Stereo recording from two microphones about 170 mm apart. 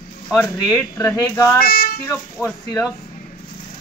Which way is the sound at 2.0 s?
10° left (ahead or behind).